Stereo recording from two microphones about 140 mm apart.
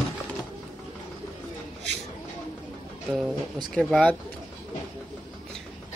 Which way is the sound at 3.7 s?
5° left (ahead or behind).